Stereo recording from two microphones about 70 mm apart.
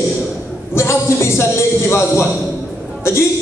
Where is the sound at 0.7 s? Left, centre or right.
Left.